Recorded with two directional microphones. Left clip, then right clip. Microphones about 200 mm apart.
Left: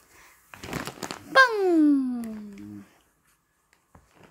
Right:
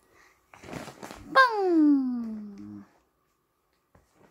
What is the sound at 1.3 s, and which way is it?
Speech, centre (ahead or behind).